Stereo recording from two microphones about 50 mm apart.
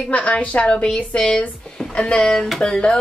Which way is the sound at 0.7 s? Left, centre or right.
Centre.